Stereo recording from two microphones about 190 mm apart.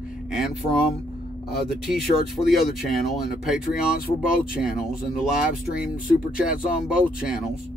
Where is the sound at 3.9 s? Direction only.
50° left (ahead or behind).